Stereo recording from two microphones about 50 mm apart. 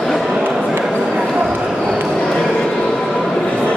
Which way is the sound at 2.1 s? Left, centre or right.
Centre.